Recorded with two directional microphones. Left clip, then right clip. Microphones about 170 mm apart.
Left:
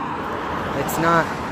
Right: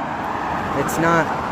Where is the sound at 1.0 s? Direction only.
20° right (ahead or behind).